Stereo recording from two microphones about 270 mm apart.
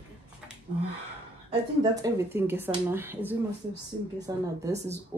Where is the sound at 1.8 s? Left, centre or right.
Centre.